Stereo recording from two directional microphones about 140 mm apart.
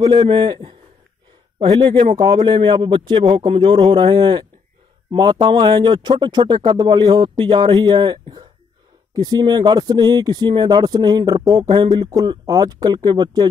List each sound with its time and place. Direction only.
0.0 s speech: 30° right (ahead or behind)